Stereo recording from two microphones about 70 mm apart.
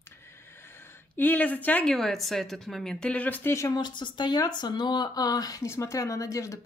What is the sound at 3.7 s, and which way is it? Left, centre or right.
Speech, left.